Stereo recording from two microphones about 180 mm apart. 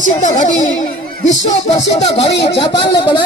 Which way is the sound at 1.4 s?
35° left (ahead or behind).